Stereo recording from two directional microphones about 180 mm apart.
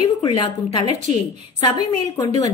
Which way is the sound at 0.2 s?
30° left (ahead or behind).